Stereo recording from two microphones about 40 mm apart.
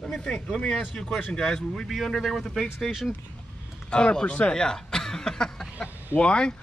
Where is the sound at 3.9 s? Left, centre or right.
Left.